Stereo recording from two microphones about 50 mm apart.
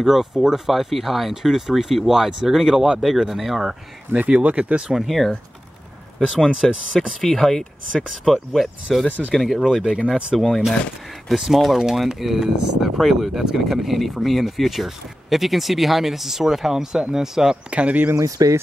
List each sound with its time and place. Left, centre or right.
0.0 s speech: centre
4.2 s speech: right
4.9 s speech: centre
6.5 s speech: centre
6.9 s speech: centre
9.9 s speech: centre
17.6 s speech: right
18.1 s speech: right